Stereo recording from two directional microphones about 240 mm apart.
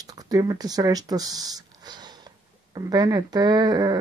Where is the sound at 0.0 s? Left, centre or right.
Centre.